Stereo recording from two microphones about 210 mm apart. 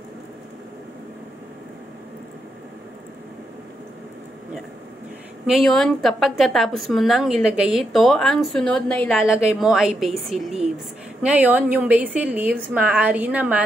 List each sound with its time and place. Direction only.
5.5 s a woman's voice: centre (ahead or behind)